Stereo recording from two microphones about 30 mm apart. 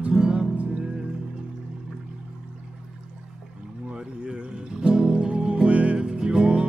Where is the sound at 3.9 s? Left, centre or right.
Right.